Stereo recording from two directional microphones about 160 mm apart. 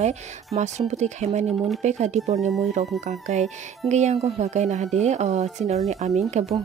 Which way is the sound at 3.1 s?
45° right (ahead or behind).